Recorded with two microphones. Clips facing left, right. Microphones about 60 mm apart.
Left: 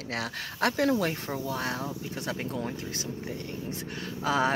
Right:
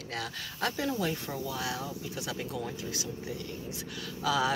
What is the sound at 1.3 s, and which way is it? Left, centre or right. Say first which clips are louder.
Speech: left 3 dB; left.